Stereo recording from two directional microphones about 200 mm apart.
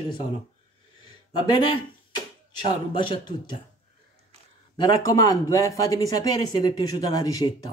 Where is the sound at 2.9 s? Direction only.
25° left (ahead or behind).